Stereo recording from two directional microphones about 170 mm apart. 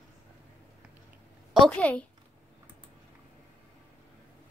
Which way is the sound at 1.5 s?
5° left (ahead or behind).